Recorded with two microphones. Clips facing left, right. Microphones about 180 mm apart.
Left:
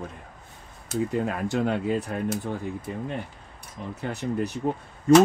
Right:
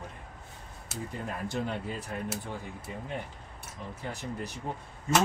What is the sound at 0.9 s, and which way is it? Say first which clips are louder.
Speech: left 11 dB; 75° left (ahead or behind).